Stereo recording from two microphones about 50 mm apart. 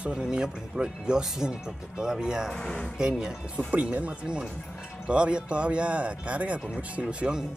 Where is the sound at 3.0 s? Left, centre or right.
Centre.